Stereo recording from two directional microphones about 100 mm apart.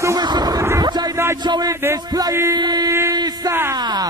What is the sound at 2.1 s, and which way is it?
Chant, 40° right (ahead or behind).